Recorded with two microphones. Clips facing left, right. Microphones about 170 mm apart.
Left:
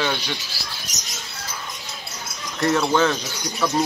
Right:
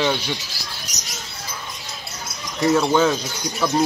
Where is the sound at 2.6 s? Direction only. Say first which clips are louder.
Right 2 dB; 5° right (ahead or behind).